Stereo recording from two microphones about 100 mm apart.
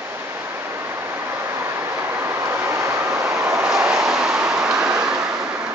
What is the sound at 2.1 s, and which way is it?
Vehicle, 25° right (ahead or behind).